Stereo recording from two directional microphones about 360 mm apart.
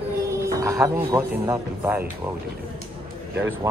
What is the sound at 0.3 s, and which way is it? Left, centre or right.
Speech, centre.